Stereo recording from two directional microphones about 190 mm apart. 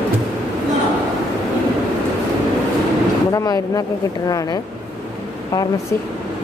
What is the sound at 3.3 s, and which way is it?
Speech, 20° left (ahead or behind).